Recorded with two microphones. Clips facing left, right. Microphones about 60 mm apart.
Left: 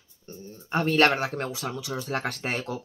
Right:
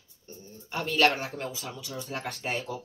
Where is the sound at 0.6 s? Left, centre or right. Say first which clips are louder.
Left 3 dB; left.